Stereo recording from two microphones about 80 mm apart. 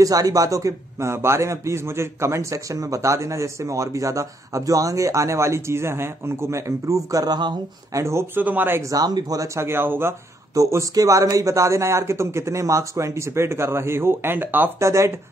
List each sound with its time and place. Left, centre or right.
0.0 s a man's voice: right
8.4 s speech: right
8.9 s speech: right
9.6 s speech: right
10.5 s a man's voice: right
14.8 s a man's voice: right